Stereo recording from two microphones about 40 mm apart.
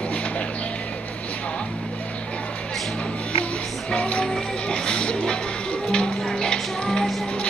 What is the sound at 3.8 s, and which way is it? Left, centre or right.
Music, left.